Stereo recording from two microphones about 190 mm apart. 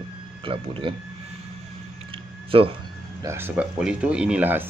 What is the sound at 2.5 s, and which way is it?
Speech, 30° right (ahead or behind).